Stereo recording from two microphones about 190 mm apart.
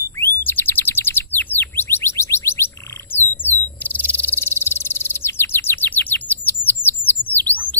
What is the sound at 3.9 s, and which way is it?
Bird, 10° left (ahead or behind).